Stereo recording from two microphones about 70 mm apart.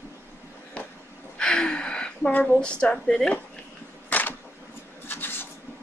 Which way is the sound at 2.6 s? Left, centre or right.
Centre.